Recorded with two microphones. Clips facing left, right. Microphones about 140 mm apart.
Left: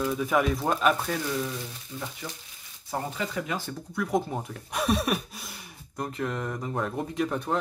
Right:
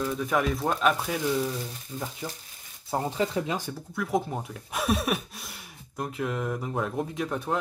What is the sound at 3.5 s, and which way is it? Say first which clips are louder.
Speech: left 1 dB; 5° right (ahead or behind).